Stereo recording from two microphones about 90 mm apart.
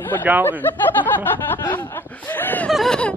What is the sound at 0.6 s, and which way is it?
Speech, 20° left (ahead or behind).